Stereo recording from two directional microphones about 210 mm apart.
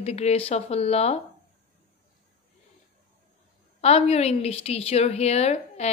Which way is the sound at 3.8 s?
30° left (ahead or behind).